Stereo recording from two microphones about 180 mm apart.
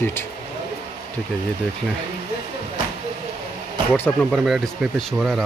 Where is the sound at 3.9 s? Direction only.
10° left (ahead or behind).